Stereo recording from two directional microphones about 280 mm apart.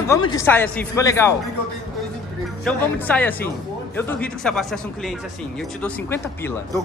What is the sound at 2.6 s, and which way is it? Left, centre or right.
Speech, centre.